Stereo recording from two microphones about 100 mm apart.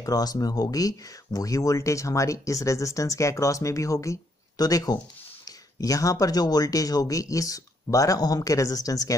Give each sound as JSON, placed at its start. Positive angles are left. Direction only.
{"t": 0.0, "sound": "speech", "side_deg": 40}